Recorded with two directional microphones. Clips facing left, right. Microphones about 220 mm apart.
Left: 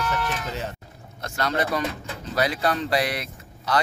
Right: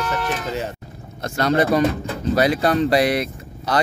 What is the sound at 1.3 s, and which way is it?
Speech, 40° right (ahead or behind).